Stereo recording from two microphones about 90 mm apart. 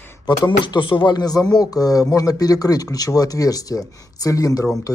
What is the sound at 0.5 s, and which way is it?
A man's voice, 60° left (ahead or behind).